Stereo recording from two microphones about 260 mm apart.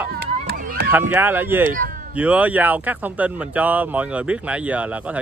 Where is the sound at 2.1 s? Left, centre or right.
Centre.